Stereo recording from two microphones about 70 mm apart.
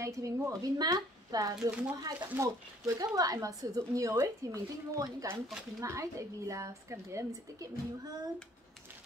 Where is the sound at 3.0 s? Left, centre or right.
Right.